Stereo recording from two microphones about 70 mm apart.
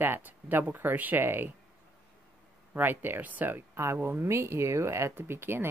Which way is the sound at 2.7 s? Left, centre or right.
Right.